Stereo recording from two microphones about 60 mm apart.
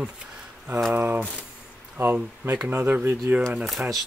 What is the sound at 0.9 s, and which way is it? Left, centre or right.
Speech, right.